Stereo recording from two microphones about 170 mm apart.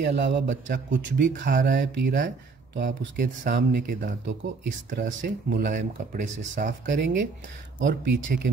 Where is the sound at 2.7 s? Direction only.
80° right.